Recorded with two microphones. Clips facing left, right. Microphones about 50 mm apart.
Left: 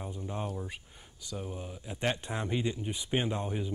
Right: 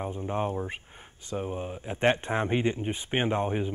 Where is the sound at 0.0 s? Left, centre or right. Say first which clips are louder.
Right 7 dB; right.